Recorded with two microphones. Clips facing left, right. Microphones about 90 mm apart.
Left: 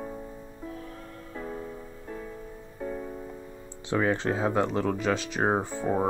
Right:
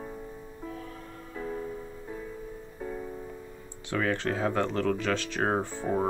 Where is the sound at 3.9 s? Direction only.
20° left (ahead or behind).